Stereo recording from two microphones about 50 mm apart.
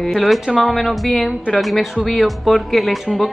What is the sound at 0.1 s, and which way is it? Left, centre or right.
A woman's voice, centre.